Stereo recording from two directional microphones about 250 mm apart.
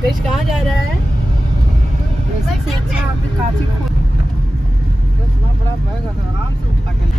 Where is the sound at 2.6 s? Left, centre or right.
Centre.